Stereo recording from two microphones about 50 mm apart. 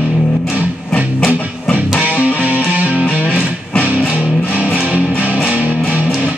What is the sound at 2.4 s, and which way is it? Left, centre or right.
Music, right.